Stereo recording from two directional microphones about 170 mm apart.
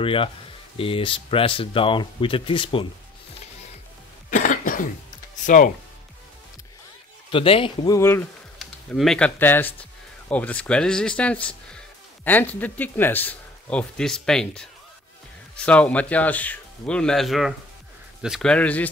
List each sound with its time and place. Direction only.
0.0 s speech: 30° left (ahead or behind)
4.3 s throat clearing: 50° left (ahead or behind)
7.2 s speech: 30° left (ahead or behind); by 8.3 s 15° left (ahead or behind)
8.5 s speech: centre (ahead or behind)